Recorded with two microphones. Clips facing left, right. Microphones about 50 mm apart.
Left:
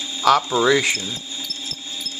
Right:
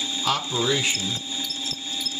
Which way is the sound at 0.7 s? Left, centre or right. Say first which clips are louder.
Left 7 dB; left.